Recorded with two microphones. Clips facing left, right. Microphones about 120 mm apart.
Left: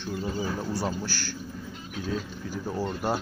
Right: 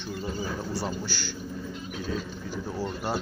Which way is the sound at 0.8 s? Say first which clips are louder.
Left 1 dB; 5° left (ahead or behind).